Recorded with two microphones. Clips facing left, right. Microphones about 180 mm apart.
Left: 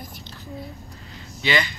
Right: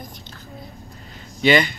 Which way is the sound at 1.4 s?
55° right (ahead or behind).